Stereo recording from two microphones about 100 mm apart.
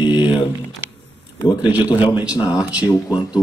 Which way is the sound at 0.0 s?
50° left (ahead or behind).